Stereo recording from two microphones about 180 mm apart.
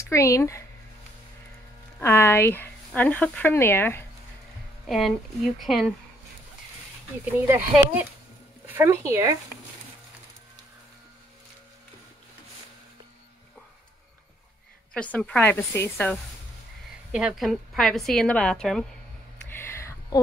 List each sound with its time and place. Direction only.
0.1 s speech: 15° left (ahead or behind)
2.0 s speech: 15° left (ahead or behind)
4.8 s a woman's voice: centre (ahead or behind)
7.3 s speech: 10° right (ahead or behind)
15.0 s speech: 5° left (ahead or behind)
17.1 s a woman's voice: 5° right (ahead or behind)
19.5 s a sound: 15° left (ahead or behind)